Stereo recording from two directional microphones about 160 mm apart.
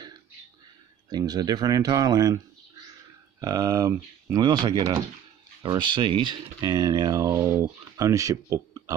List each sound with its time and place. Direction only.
1.1 s speech: 25° right (ahead or behind)